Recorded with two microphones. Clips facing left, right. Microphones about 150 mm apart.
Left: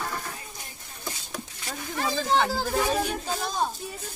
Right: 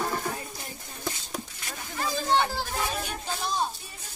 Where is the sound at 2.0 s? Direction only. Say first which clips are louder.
Left 1 dB; 90° left.